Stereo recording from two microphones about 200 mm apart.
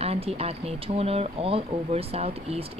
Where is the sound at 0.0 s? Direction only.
30° right (ahead or behind).